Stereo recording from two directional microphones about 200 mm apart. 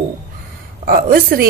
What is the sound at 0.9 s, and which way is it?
Speech, 50° right (ahead or behind).